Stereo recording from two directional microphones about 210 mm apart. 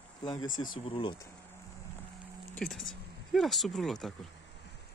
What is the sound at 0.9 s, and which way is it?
Speech, 25° left (ahead or behind).